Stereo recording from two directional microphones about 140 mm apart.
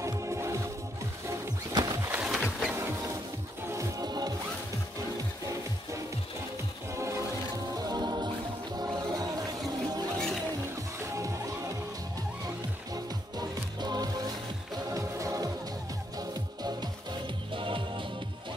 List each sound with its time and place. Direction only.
0.0 s music: 20° right (ahead or behind)
1.7 s wild animals: 25° right (ahead or behind)
2.2 s wild animals: centre (ahead or behind)
2.7 s music: 20° right (ahead or behind)
7.0 s music: 20° right (ahead or behind)
11.0 s music: 20° right (ahead or behind)
12.9 s music: 30° right (ahead or behind)
17.6 s music: 35° right (ahead or behind)